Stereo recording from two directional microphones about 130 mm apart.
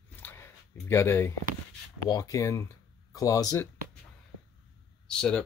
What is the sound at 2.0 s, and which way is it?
Speech, 25° left (ahead or behind).